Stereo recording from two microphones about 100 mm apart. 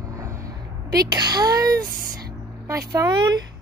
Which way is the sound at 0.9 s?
40° right (ahead or behind).